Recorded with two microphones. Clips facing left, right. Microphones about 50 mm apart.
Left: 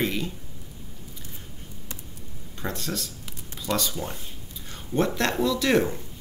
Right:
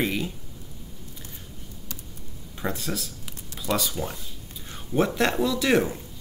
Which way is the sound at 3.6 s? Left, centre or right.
Centre.